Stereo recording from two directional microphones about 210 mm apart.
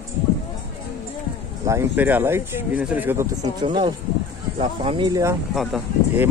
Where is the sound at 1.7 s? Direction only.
10° right (ahead or behind).